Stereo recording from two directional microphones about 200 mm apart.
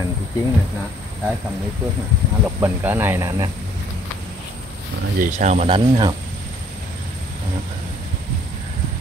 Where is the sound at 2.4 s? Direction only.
10° right (ahead or behind).